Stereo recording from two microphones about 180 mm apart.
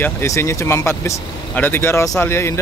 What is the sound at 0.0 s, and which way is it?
Speech, 15° left (ahead or behind).